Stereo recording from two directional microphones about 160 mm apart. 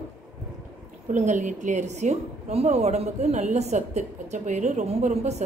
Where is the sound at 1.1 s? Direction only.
50° right (ahead or behind).